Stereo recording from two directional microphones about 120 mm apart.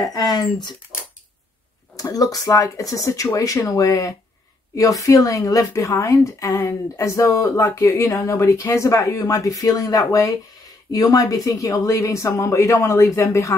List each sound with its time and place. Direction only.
0.0 s speech: 30° left (ahead or behind)
2.0 s a woman's voice: 30° left (ahead or behind)